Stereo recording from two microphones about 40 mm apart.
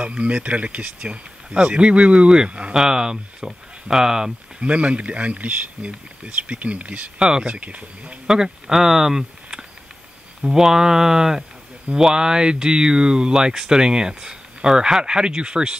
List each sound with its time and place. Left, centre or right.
0.0 s speech: right
4.6 s speech: right
7.2 s speech: right
8.3 s speech: centre